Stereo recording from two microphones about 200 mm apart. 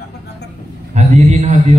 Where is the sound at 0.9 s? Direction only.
35° right (ahead or behind).